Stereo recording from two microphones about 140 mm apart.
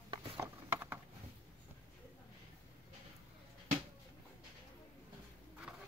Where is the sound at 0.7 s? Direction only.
15° right (ahead or behind).